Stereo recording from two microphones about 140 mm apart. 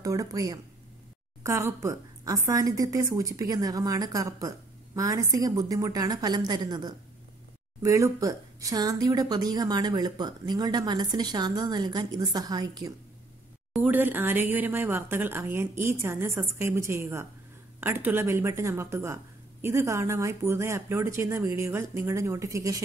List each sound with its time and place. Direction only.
0.0 s a woman's voice: 25° right (ahead or behind)
13.7 s a woman's voice: 10° right (ahead or behind)